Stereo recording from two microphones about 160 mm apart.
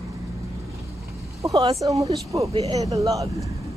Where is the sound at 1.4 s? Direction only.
25° right (ahead or behind).